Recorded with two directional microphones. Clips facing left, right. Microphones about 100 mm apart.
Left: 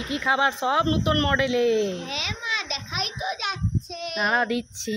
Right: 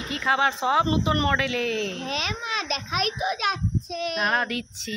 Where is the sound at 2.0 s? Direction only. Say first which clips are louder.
Right 2 dB; 45° right (ahead or behind).